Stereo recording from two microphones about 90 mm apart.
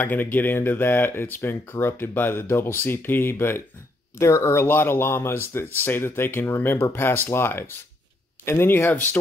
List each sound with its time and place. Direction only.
0.0 s speech: 20° left (ahead or behind)